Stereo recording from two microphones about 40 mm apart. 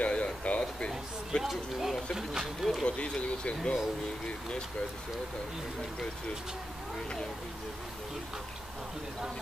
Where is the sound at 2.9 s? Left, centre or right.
Left.